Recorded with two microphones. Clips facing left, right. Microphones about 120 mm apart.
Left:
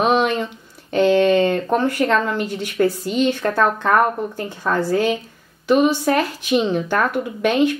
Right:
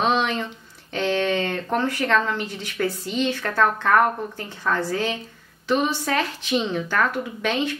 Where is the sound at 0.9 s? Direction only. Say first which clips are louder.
Left 8 dB; 15° left (ahead or behind).